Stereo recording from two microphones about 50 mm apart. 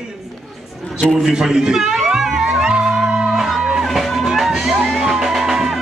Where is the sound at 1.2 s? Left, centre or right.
Centre.